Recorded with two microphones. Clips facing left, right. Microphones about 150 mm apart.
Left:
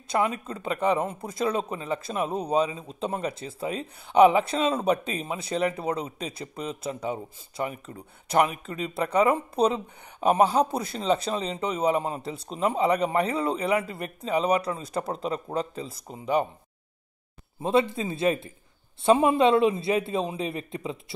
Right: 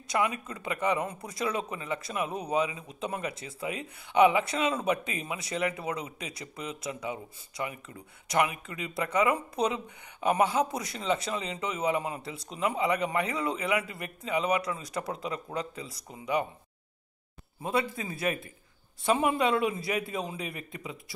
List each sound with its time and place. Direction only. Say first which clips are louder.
0.1 s speech: left 3 dB; 30° left (ahead or behind)
17.6 s a man's voice: left 7 dB; 25° left (ahead or behind)